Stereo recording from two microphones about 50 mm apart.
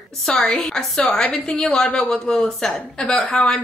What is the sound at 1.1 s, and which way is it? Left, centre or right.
Speech, centre.